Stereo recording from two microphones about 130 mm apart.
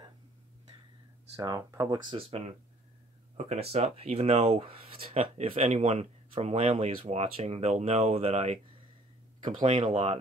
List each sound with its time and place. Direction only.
1.3 s speech: 30° right (ahead or behind); by 8.5 s 55° right (ahead or behind)
9.4 s speech: 35° right (ahead or behind)